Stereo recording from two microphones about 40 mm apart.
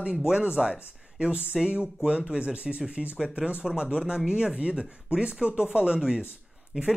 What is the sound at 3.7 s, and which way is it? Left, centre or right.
Speech, centre.